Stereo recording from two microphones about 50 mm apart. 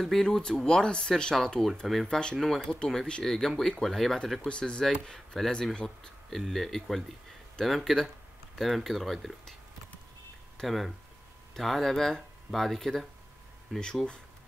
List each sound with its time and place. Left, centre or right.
0.0 s speech: centre
2.0 s speech: centre
2.3 s speech: centre
4.5 s speech: centre
6.3 s speech: centre
10.6 s speech: centre